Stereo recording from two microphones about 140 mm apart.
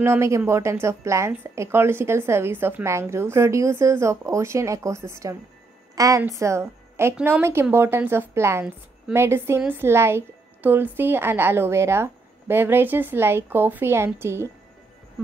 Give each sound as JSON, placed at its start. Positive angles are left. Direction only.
{"t": 0.0, "sound": "a woman's voice", "side_deg": -20}